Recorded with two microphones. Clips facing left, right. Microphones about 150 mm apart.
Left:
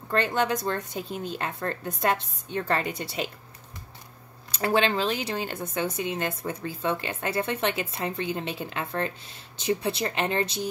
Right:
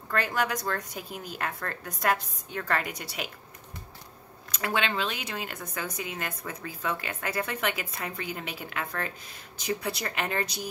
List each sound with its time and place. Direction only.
0.1 s speech: 25° left (ahead or behind)
4.5 s speech: 30° left (ahead or behind)